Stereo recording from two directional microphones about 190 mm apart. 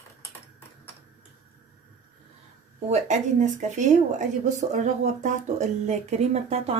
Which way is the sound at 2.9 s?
40° right (ahead or behind).